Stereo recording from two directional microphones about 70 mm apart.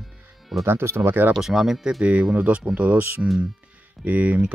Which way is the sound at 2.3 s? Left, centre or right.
Right.